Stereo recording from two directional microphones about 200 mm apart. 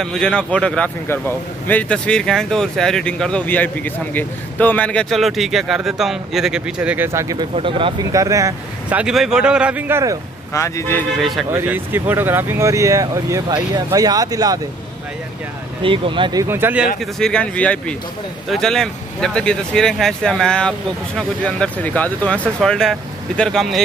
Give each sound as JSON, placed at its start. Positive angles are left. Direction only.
{"t": 0.0, "sound": "a man's voice", "side_deg": 5}
{"t": 7.5, "sound": "speech", "side_deg": -25}
{"t": 10.5, "sound": "speech", "side_deg": 15}
{"t": 11.1, "sound": "a man's voice", "side_deg": 0}
{"t": 15.8, "sound": "speech", "side_deg": -25}
{"t": 17.0, "sound": "a man's voice", "side_deg": 5}